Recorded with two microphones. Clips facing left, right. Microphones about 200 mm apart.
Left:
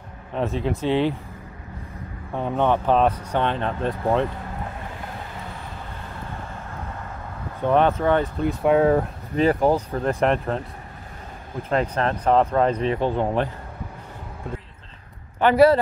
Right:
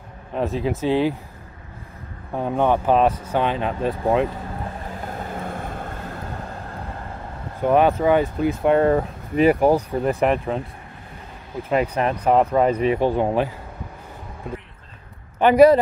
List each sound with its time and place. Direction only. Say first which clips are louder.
0.3 s speech: right 1 dB; centre (ahead or behind)
2.3 s speech: right 2 dB; 5° right (ahead or behind)
5.3 s vehicle: right 7 dB; 50° right (ahead or behind)
7.6 s speech: right 2 dB; 10° right (ahead or behind)
9.4 s speech: right 3 dB; 10° right (ahead or behind)
11.7 s speech: right 2 dB; 10° right (ahead or behind)
15.3 s a man's voice: right 3 dB; 15° right (ahead or behind)